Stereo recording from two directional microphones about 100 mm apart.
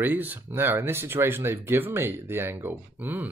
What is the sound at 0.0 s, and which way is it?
Speech, 20° right (ahead or behind).